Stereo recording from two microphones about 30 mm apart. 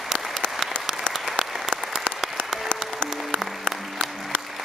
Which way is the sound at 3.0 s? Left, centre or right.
Centre.